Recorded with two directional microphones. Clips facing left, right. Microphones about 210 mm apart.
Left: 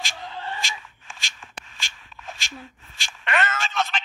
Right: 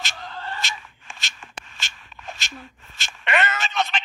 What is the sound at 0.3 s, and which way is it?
Cat, 15° left (ahead or behind).